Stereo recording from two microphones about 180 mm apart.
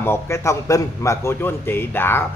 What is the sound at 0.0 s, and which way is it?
A man's voice, 15° left (ahead or behind).